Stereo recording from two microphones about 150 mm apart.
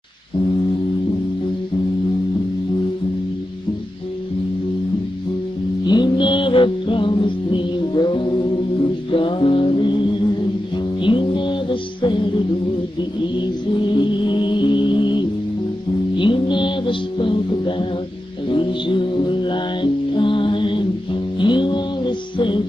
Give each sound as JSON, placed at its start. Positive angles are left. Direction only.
{"t": 5.9, "sound": "music", "side_deg": 30}
{"t": 13.9, "sound": "music", "side_deg": 30}